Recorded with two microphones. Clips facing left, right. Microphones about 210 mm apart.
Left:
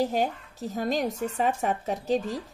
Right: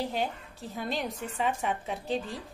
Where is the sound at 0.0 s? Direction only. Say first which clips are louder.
Left 6 dB; 45° left (ahead or behind).